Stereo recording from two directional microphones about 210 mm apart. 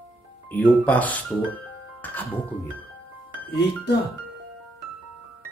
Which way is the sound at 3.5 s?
55° left (ahead or behind).